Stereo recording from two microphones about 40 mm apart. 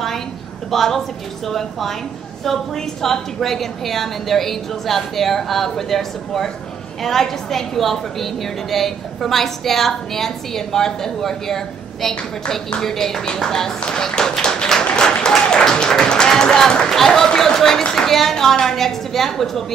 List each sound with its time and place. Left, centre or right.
0.7 s a woman's voice: centre
15.6 s music: centre
16.9 s a woman's voice: centre